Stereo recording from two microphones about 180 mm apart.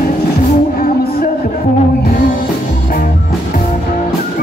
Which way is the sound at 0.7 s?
55° left (ahead or behind).